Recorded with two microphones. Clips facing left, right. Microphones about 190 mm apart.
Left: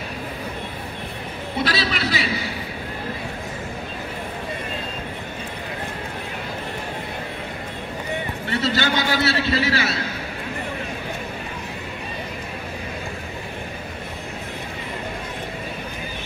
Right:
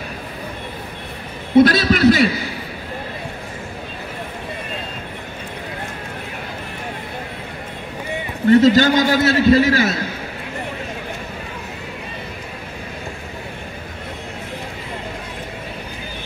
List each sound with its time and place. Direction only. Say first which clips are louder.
1.6 s a man's voice: right 12 dB; 50° right (ahead or behind)
8.5 s a man's voice: right 12 dB; 45° right (ahead or behind)